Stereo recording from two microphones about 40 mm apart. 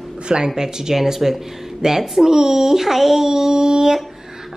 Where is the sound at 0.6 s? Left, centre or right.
Centre.